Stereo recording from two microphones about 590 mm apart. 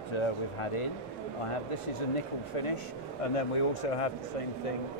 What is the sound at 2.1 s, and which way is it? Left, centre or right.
Speech, left.